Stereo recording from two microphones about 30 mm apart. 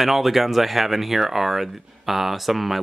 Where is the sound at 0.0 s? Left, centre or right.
Centre.